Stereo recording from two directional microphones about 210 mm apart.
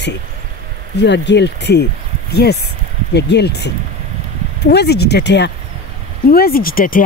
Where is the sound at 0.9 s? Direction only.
55° left (ahead or behind).